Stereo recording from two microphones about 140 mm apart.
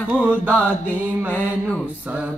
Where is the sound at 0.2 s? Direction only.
10° right (ahead or behind).